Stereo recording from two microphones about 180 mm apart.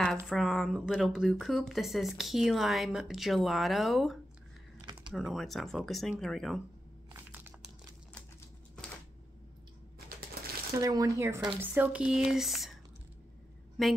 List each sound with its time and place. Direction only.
0.3 s speech: centre (ahead or behind)
7.2 s crumpling: 10° right (ahead or behind)
10.8 s speech: 20° right (ahead or behind); by 12.7 s centre (ahead or behind)
13.8 s speech: centre (ahead or behind)